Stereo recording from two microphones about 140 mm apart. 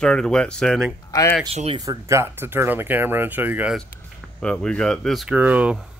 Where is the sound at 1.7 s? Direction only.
20° right (ahead or behind).